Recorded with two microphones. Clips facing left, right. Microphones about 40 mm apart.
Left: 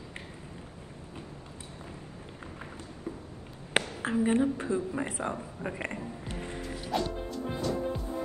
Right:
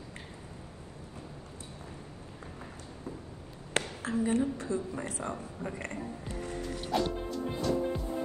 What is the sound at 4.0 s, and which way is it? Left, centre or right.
A woman's voice, left.